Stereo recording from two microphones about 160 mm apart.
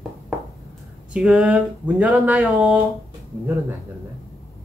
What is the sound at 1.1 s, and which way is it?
Speech, 5° right (ahead or behind).